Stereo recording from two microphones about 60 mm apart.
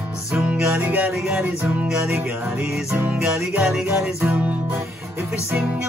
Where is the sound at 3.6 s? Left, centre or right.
Centre.